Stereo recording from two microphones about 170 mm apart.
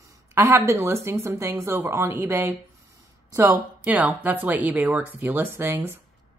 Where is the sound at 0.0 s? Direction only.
15° right (ahead or behind).